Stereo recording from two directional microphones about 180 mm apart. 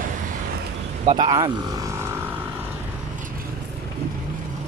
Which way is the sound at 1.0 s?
25° right (ahead or behind).